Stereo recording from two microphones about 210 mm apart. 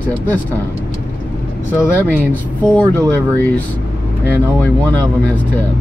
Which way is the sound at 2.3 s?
5° left (ahead or behind).